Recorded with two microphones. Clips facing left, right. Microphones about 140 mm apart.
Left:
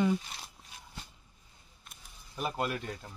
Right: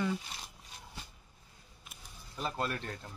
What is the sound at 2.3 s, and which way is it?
Speech, 15° left (ahead or behind).